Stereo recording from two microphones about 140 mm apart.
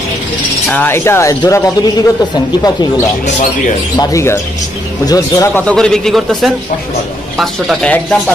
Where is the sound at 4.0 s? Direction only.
20° left (ahead or behind).